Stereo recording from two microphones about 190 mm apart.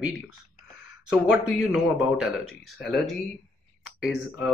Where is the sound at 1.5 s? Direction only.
Centre (ahead or behind).